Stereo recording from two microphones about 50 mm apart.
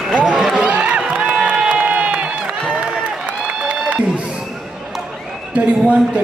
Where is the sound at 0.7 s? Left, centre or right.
Right.